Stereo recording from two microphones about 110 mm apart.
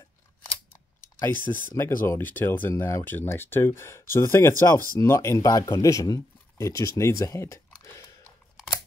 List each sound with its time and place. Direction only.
1.2 s speech: 15° left (ahead or behind)